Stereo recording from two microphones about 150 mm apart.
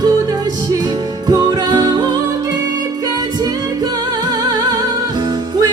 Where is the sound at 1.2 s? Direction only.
30° right (ahead or behind).